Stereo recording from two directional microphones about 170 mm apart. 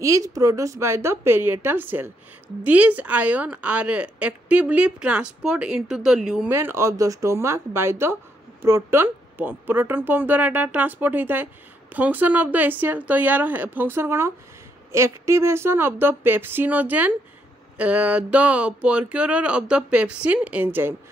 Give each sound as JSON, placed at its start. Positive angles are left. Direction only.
{"t": 0.0, "sound": "speech", "side_deg": -20}
{"t": 6.5, "sound": "speech", "side_deg": -15}